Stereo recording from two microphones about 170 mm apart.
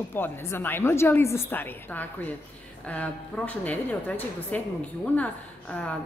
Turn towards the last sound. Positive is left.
turn(degrees=10)  # may be behind; listen again after turning